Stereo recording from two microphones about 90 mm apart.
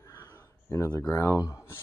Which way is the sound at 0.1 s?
30° left (ahead or behind).